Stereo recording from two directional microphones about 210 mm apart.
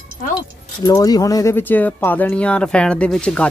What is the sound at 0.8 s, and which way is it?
Speech, 15° left (ahead or behind).